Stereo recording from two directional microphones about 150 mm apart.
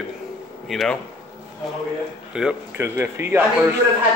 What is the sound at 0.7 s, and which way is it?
Speech, centre (ahead or behind).